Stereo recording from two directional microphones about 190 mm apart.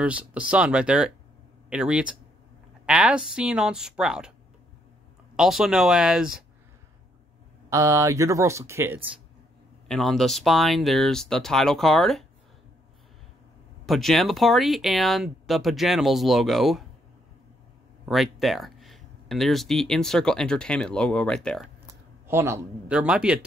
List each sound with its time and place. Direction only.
0.0 s speech: 5° right (ahead or behind)
5.3 s speech: 5° right (ahead or behind)
7.7 s speech: 15° right (ahead or behind)
9.8 s speech: 5° left (ahead or behind)
13.8 s speech: centre (ahead or behind)
18.0 s speech: centre (ahead or behind)
22.3 s speech: 15° right (ahead or behind)